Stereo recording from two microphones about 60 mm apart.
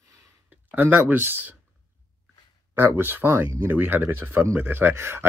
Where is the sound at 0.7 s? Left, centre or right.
Right.